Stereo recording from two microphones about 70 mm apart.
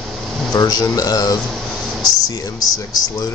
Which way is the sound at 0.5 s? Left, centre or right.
Left.